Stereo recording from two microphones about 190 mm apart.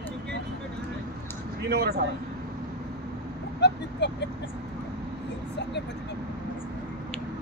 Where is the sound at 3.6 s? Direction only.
65° left (ahead or behind).